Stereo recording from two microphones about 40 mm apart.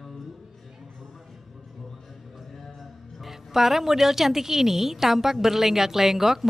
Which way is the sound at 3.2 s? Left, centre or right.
Centre.